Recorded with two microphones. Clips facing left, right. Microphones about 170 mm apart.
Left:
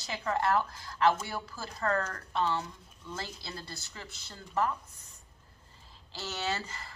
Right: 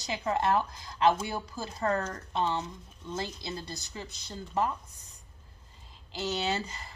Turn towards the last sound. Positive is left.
turn(degrees=-20)  # may be behind; listen again after turning